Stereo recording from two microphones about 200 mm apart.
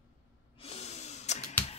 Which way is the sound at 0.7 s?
35° left (ahead or behind).